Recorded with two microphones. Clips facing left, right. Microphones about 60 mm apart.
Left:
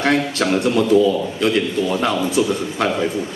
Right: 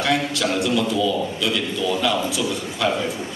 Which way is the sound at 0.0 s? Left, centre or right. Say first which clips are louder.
Left 3 dB; left.